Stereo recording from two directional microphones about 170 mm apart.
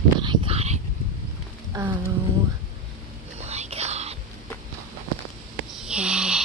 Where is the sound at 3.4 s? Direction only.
40° right (ahead or behind).